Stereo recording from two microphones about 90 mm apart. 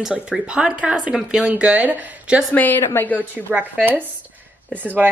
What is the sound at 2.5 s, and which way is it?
Speech, 20° left (ahead or behind).